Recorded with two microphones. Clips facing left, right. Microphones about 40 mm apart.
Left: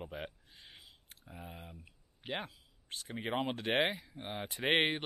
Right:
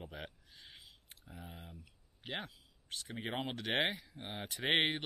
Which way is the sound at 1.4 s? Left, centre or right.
Centre.